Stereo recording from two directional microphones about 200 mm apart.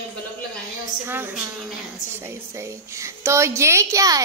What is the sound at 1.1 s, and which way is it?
A woman's voice, 10° right (ahead or behind).